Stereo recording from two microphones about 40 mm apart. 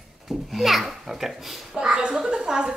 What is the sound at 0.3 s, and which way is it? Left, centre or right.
A child's voice, centre.